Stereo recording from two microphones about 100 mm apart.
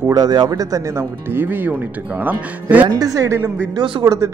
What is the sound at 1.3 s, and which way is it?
Speech, 20° right (ahead or behind).